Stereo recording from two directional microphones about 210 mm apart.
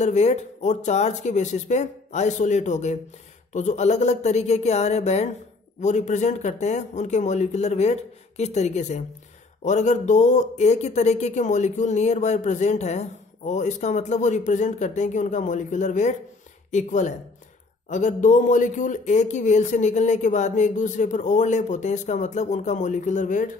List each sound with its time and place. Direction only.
0.0 s speech: 35° left (ahead or behind)